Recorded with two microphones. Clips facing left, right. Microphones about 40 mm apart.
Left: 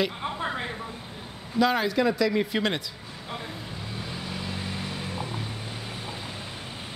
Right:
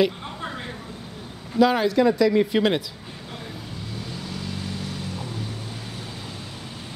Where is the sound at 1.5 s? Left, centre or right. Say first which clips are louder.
Right 4 dB; centre.